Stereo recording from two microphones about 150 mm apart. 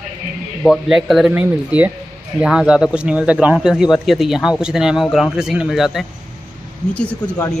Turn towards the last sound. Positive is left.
turn(degrees=10)  # may be behind; listen again after turning